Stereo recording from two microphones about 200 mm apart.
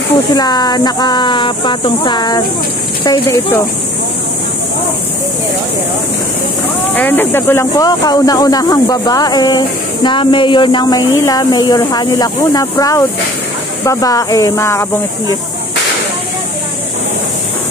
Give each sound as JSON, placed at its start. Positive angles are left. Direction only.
{"t": 0.3, "sound": "speech", "side_deg": 20}
{"t": 7.0, "sound": "speech", "side_deg": 10}